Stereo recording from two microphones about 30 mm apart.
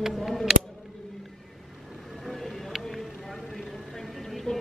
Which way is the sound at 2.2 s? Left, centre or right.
Centre.